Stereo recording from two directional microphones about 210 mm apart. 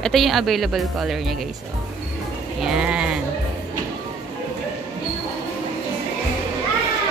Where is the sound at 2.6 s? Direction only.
5° right (ahead or behind).